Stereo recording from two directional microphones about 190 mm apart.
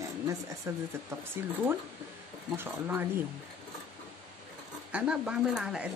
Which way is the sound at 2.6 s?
10° right (ahead or behind).